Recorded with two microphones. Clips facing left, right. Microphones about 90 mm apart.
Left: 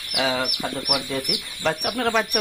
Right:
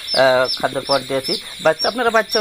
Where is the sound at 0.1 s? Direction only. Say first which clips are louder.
Right 11 dB; 65° right (ahead or behind).